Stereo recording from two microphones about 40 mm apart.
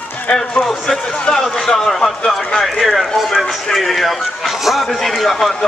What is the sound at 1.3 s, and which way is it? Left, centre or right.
Speech, left.